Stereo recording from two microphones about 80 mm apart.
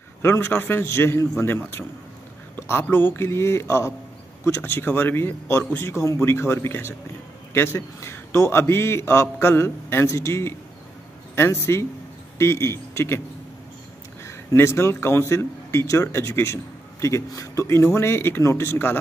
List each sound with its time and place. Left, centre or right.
0.2 s a man's voice: left
14.2 s a man's voice: left